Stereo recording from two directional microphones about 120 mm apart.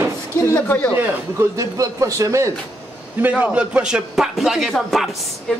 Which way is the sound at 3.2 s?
10° right (ahead or behind).